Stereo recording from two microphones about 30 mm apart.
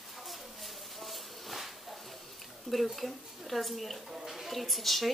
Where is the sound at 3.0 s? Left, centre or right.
Centre.